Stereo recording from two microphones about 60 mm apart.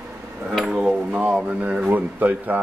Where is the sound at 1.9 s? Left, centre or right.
Right.